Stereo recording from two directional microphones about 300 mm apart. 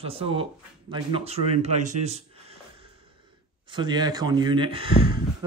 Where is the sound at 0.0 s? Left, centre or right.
Centre.